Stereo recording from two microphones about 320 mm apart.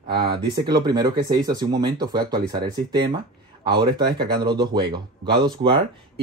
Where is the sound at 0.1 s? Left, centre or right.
Centre.